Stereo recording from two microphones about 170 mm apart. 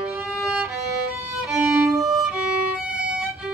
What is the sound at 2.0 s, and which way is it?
Violin, centre (ahead or behind).